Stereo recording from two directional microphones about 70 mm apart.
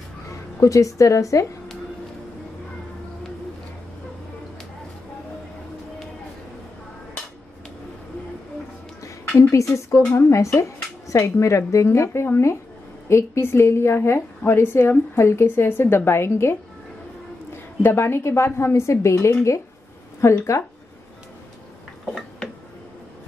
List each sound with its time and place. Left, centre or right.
0.3 s a woman's voice: left
9.4 s a woman's voice: left
17.8 s a woman's voice: left